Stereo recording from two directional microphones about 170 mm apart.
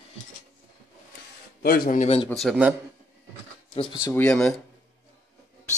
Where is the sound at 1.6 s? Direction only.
60° left (ahead or behind).